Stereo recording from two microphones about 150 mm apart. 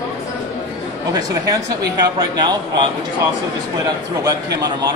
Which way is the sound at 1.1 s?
25° right (ahead or behind).